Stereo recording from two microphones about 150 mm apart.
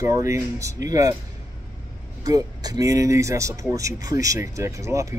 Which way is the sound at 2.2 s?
25° right (ahead or behind).